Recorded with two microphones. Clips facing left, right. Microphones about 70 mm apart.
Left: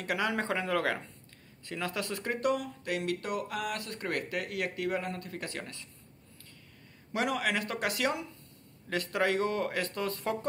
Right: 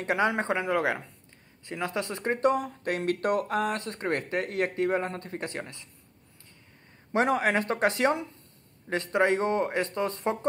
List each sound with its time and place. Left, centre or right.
0.0 s speech: right
7.1 s speech: right